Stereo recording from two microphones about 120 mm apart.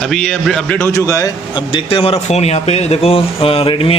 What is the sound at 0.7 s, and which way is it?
Speech, 25° left (ahead or behind).